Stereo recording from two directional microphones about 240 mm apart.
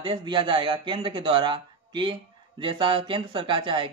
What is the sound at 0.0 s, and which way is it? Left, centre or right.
A man's voice, centre.